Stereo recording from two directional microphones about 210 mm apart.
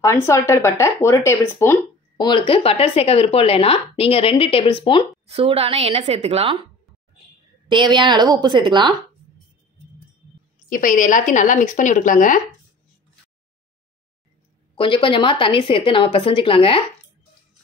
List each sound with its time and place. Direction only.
0.0 s speech: 15° left (ahead or behind)
5.3 s a woman's voice: 30° right (ahead or behind)
7.9 s a woman's voice: 20° right (ahead or behind)
10.7 s a woman's voice: 40° left (ahead or behind)
14.8 s speech: 25° left (ahead or behind)